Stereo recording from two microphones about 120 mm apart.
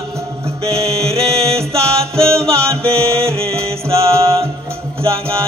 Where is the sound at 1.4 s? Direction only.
25° right (ahead or behind).